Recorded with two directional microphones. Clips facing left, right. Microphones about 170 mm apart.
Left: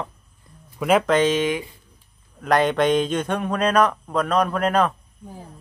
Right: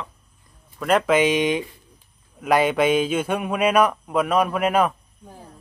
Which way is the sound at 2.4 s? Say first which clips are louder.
Even; 5° right (ahead or behind).